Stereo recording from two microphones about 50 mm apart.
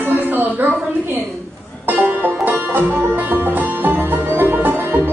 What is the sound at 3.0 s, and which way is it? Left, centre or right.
Music, right.